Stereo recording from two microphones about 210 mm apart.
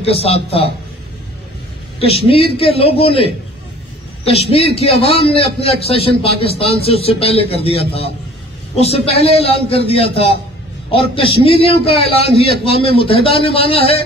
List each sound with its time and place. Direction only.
0.0 s a man's voice: 30° left (ahead or behind)
2.0 s a man's voice: 25° left (ahead or behind)